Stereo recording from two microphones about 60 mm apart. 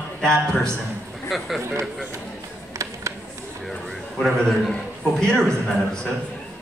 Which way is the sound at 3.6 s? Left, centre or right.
Centre.